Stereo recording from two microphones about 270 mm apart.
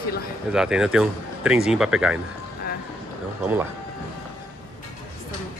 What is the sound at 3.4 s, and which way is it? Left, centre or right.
Speech, centre.